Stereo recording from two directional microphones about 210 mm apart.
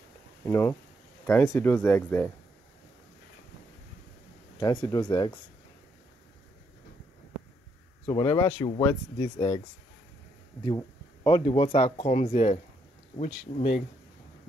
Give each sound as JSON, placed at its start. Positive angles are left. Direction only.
{"t": 0.5, "sound": "speech", "side_deg": 10}
{"t": 4.6, "sound": "speech", "side_deg": 15}
{"t": 8.1, "sound": "speech", "side_deg": 20}
{"t": 11.2, "sound": "speech", "side_deg": 25}